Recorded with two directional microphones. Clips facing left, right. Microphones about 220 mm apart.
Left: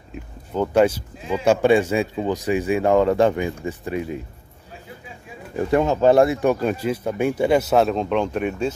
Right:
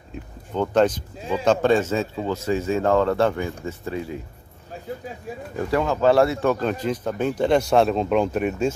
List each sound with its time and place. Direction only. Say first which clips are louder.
0.1 s speech: left 1 dB; 5° left (ahead or behind)
5.6 s speech: left 3 dB; 20° left (ahead or behind); by 8.7 s 5° right (ahead or behind)